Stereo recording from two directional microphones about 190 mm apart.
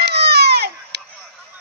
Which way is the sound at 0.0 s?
60° right (ahead or behind).